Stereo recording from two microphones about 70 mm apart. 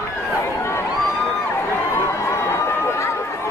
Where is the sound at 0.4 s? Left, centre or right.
Left.